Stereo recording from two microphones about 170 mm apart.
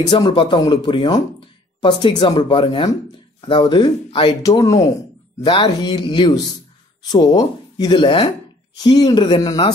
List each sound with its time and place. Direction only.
0.1 s speech: 30° left (ahead or behind)